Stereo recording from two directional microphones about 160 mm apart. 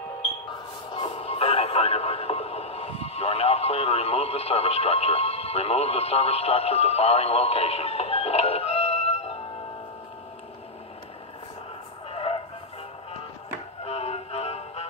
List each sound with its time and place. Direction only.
0.9 s radio: 35° left (ahead or behind)
12.1 s a sound: 35° left (ahead or behind)
13.8 s music: 40° left (ahead or behind)